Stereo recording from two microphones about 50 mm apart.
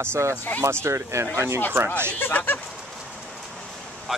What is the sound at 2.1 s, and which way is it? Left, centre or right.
Speech, left.